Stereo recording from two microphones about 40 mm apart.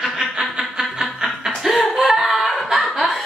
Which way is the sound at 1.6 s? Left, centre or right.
Centre.